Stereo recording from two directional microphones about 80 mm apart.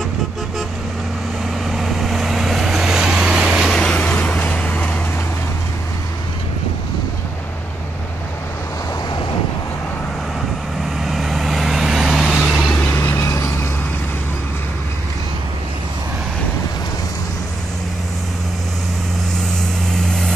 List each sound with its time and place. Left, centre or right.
1.7 s vehicle: centre
3.7 s vehicle: centre
11.1 s vehicle: centre
12.8 s vehicle: left
20.1 s vehicle: centre